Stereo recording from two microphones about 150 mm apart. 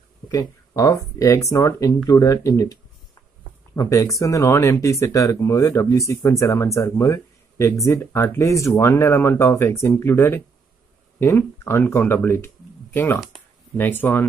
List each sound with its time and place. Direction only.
0.3 s speech: 20° left (ahead or behind)